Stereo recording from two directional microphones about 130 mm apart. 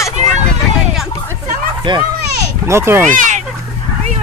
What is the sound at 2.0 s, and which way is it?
Children playing, 20° right (ahead or behind).